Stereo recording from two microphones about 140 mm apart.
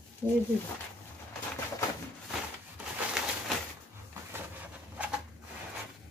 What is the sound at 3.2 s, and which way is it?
Bird, 5° right (ahead or behind).